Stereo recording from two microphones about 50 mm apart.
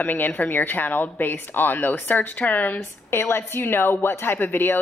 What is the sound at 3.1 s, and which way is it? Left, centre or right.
A woman's voice, left.